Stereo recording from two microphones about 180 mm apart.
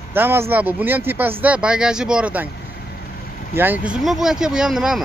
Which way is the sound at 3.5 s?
10° right (ahead or behind).